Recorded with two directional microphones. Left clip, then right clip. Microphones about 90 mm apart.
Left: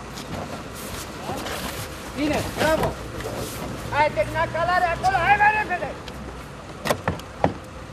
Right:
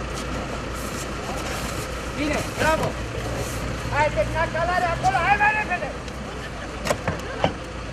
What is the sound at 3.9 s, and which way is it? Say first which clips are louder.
Speech: left 1 dB; 40° right (ahead or behind).